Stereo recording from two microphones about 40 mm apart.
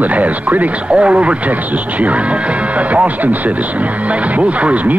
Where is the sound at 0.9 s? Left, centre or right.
Right.